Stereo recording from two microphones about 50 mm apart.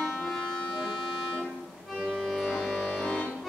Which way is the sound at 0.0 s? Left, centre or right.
Centre.